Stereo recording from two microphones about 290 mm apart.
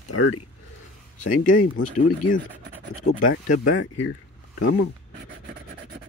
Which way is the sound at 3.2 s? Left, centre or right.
Left.